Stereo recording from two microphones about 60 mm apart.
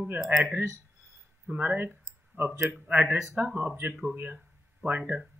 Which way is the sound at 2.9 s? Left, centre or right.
Right.